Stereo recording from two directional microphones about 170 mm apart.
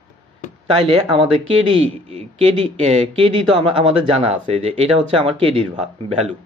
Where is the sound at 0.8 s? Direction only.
30° right (ahead or behind).